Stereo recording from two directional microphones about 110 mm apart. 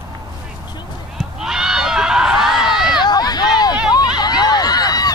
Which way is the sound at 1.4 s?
5° right (ahead or behind).